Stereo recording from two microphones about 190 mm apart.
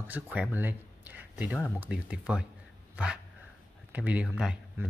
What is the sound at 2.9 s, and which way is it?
Dog, 5° right (ahead or behind).